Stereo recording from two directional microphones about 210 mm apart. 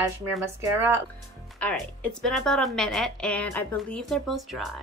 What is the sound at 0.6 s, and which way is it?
Speech, 10° right (ahead or behind).